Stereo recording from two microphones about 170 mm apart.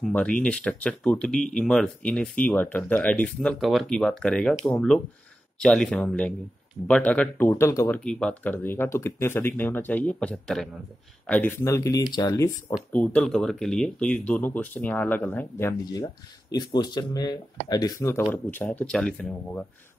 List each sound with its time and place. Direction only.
0.0 s speech: 5° left (ahead or behind)
12.9 s speech: 5° left (ahead or behind)